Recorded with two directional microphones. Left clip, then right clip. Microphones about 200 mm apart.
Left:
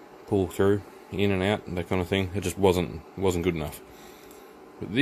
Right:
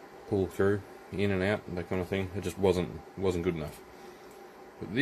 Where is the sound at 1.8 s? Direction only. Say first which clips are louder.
Left 6 dB; 35° left (ahead or behind).